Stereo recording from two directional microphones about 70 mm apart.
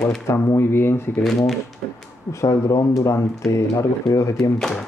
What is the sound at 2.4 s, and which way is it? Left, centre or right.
Speech, left.